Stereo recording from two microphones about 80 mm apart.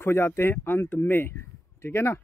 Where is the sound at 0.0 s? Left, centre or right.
Left.